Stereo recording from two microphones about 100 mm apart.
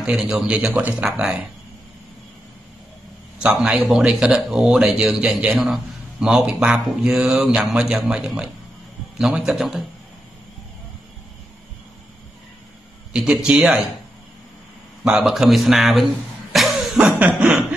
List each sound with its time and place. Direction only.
0.0 s speech: 10° right (ahead or behind)
3.3 s a man's voice: 5° right (ahead or behind)
13.1 s speech: 10° right (ahead or behind)
15.0 s speech: 5° right (ahead or behind)
16.5 s cough: centre (ahead or behind)
17.2 s speech: 15° right (ahead or behind)